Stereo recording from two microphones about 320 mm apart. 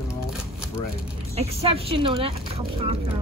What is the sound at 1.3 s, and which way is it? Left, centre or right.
Speech, centre.